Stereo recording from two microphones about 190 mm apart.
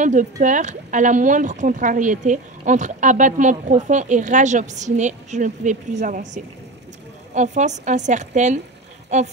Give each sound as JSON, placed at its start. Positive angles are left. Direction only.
{"t": 0.0, "sound": "speech", "side_deg": -40}